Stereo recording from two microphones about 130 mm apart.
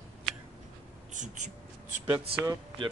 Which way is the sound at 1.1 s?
75° right (ahead or behind).